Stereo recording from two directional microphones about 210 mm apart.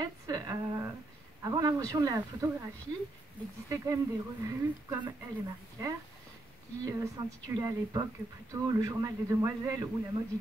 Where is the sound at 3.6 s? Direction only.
15° right (ahead or behind).